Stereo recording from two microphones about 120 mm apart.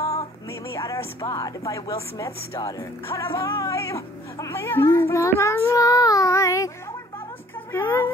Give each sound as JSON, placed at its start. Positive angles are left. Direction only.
{"t": 0.0, "sound": "speech", "side_deg": 30}
{"t": 7.7, "sound": "speech", "side_deg": 20}